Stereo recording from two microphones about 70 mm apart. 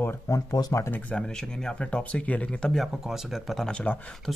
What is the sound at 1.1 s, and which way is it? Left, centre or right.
Speech, centre.